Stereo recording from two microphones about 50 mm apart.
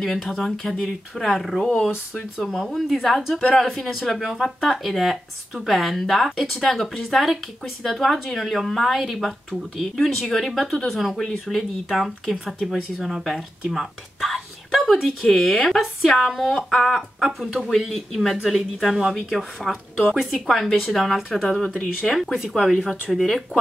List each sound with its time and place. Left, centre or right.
0.0 s speech: centre
22.8 s speech: centre
23.1 s speech: centre